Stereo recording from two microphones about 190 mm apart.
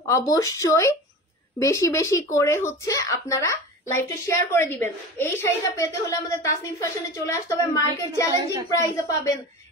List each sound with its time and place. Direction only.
0.2 s a woman's voice: 15° left (ahead or behind)